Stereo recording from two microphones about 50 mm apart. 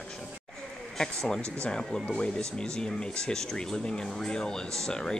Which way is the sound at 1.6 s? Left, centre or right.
Centre.